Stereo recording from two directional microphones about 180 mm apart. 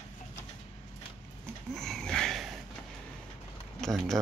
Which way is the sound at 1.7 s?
5° left (ahead or behind).